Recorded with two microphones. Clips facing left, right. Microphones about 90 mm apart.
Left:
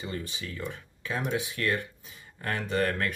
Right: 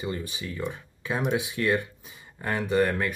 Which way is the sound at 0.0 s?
15° right (ahead or behind).